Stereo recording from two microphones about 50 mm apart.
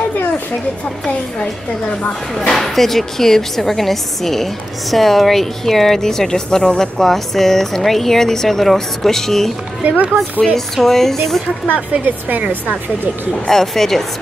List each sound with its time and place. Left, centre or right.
2.3 s a woman's voice: centre
9.8 s speech: right
10.4 s speech: centre
12.0 s speech: right
13.5 s speech: centre